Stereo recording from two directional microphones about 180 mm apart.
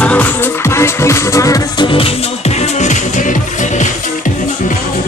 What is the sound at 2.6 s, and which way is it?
Music, 40° left (ahead or behind).